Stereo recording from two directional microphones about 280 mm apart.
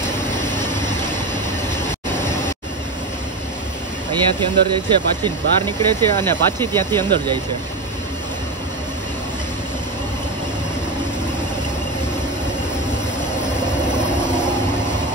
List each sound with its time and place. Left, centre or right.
4.4 s speech: centre
6.1 s speech: centre